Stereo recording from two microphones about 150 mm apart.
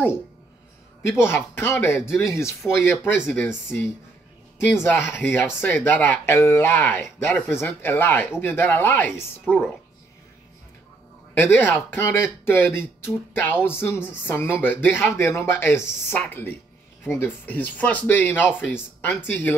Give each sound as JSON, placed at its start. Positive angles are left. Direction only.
{"t": 1.2, "sound": "speech", "side_deg": 15}
{"t": 3.0, "sound": "speech", "side_deg": -5}
{"t": 3.3, "sound": "speech", "side_deg": 15}
{"t": 4.8, "sound": "speech", "side_deg": 15}
{"t": 11.3, "sound": "speech", "side_deg": 15}